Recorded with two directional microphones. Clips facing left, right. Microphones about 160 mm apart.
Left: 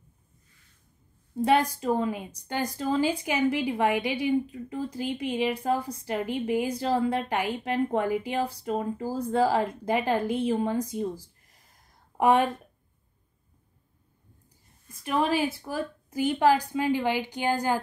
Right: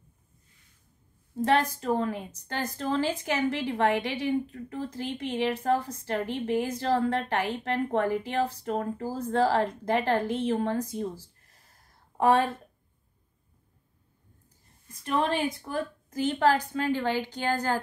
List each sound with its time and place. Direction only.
1.3 s a woman's voice: 15° left (ahead or behind)
14.9 s a woman's voice: 10° left (ahead or behind)